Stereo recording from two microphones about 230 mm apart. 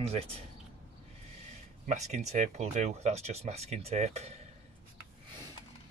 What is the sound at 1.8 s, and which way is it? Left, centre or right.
Speech, right.